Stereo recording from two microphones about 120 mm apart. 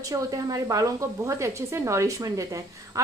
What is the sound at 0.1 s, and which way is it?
A woman's voice, 30° right (ahead or behind).